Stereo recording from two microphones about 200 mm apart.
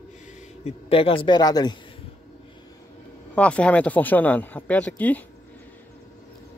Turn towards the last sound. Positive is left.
turn(degrees=5)  # may be behind; listen again after turning